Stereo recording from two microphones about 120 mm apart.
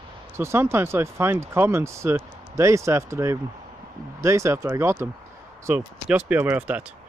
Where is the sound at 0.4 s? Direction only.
20° right (ahead or behind).